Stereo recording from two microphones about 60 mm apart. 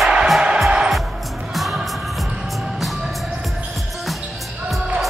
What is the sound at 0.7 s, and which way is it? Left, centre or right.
Music, centre.